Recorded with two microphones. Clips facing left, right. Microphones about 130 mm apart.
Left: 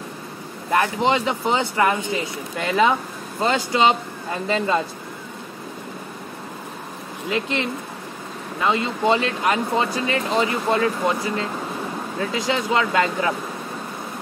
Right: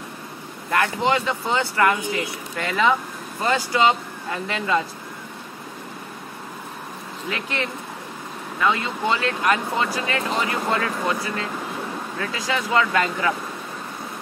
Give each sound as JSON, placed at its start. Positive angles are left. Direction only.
{"t": 0.7, "sound": "speech", "side_deg": 20}
{"t": 7.2, "sound": "speech", "side_deg": 25}
{"t": 12.2, "sound": "speech", "side_deg": 25}